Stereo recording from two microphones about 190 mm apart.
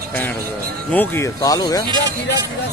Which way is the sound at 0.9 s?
10° left (ahead or behind).